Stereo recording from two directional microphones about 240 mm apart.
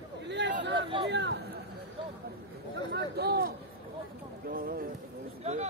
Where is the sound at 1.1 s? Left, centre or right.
Right.